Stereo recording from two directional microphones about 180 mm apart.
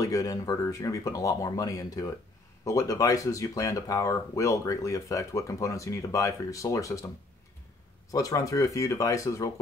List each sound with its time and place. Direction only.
0.0 s speech: 20° left (ahead or behind)
8.1 s speech: 20° left (ahead or behind)